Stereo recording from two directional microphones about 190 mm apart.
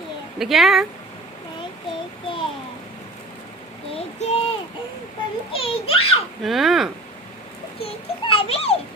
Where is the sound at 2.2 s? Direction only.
25° left (ahead or behind).